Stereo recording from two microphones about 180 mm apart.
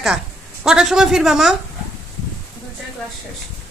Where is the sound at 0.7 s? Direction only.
5° right (ahead or behind).